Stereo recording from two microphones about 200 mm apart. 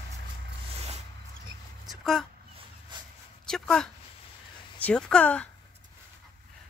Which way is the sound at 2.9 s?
20° right (ahead or behind).